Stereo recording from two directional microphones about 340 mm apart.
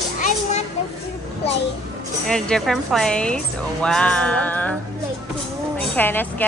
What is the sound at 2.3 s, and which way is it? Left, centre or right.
A woman's voice, centre.